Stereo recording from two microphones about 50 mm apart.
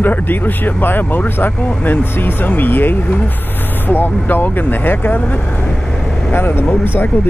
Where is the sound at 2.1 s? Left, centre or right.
Left.